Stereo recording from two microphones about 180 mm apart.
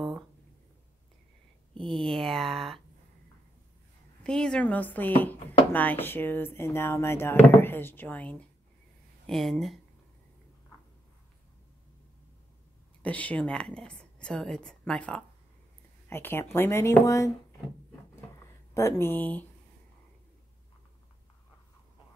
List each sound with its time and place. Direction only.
1.8 s speech: 30° right (ahead or behind)
2.0 s a woman's voice: centre (ahead or behind)
4.2 s a woman's voice: 5° left (ahead or behind)
13.0 s a woman's voice: 10° left (ahead or behind)
18.8 s speech: 15° left (ahead or behind)